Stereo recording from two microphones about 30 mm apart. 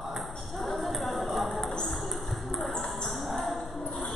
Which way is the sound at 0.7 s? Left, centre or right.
Centre.